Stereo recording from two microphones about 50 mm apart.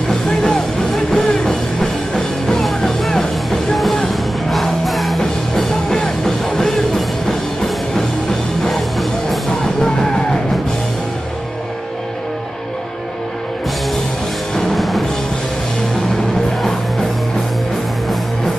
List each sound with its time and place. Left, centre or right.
0.1 s music: centre
14.5 s music: centre